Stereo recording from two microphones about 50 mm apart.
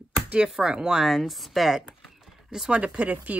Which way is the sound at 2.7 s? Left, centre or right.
Right.